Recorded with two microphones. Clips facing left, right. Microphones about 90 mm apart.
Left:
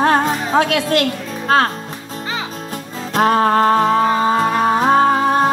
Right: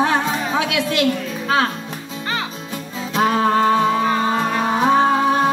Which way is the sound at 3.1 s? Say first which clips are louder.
Left 3 dB; 45° left (ahead or behind).